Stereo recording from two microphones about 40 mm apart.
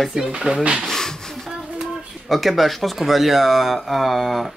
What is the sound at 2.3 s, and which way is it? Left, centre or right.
Speech, centre.